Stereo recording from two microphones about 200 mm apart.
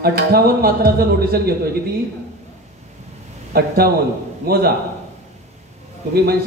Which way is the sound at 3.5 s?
50° right (ahead or behind).